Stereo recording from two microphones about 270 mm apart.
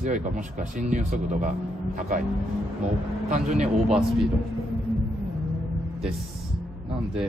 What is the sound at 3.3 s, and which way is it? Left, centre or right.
Speech, right.